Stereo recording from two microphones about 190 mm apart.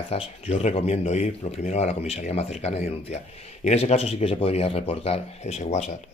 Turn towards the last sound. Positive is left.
turn(degrees=35)  # may be behind; listen again after turning